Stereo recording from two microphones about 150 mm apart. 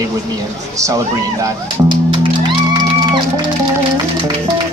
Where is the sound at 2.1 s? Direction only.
30° right (ahead or behind).